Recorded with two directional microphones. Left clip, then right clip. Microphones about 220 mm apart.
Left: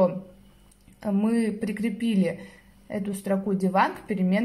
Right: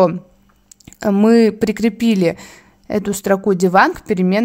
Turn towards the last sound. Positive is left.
turn(degrees=-50)  # may be behind; listen again after turning